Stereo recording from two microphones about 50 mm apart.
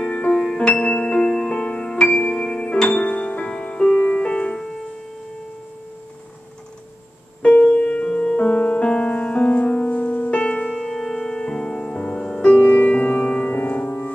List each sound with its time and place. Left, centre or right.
0.0 s music: left
2.9 s music: left
7.4 s piano: left
8.4 s music: left
10.7 s music: centre; by 14.1 s left